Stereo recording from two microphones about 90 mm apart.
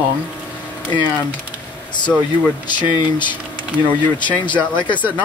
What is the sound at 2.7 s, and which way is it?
Speech, 60° left (ahead or behind).